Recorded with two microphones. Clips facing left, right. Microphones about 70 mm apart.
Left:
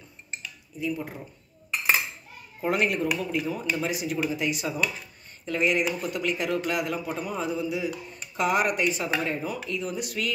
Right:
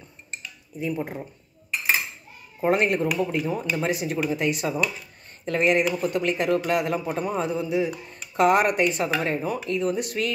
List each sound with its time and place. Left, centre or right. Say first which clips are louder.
0.7 s speech: right 3 dB; right
2.6 s speech: right 4 dB; right